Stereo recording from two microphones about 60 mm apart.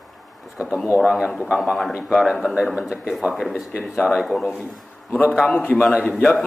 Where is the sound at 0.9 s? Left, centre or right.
Centre.